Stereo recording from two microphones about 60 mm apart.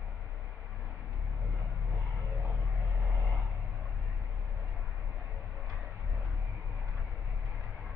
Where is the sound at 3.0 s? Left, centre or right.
Centre.